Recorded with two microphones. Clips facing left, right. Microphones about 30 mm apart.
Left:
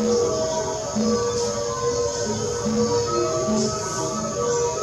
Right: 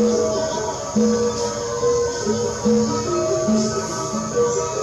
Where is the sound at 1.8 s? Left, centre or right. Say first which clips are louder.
Right 7 dB; centre.